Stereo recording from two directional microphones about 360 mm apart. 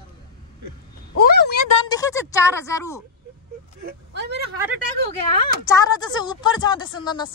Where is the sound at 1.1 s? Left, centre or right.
Left.